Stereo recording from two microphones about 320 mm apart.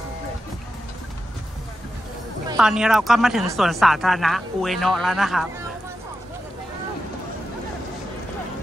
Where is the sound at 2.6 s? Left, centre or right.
Centre.